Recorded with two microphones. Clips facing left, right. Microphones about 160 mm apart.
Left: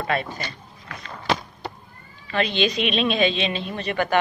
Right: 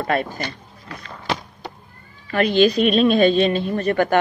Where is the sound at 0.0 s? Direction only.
45° right (ahead or behind).